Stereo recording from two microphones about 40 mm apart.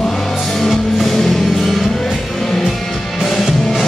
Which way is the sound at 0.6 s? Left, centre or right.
Centre.